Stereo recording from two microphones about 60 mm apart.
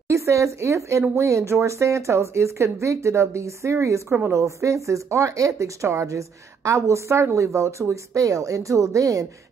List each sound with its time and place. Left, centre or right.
0.1 s speech: right